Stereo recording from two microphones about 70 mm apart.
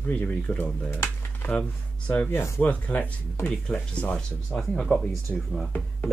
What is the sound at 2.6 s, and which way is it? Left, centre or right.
Speech, left.